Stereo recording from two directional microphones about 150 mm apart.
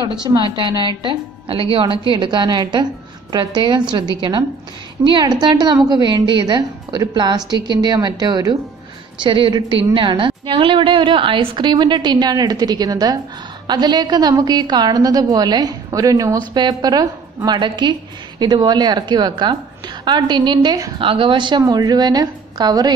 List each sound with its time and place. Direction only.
0.0 s a woman's voice: 30° right (ahead or behind)
21.0 s a woman's voice: 35° right (ahead or behind)